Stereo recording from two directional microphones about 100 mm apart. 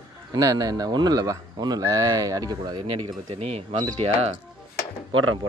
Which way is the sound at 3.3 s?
90° right.